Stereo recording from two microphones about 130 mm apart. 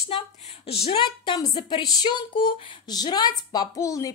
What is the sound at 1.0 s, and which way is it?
Speech, 30° left (ahead or behind).